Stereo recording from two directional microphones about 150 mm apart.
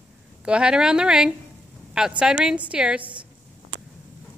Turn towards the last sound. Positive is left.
turn(degrees=-30)  # may be behind; listen again after turning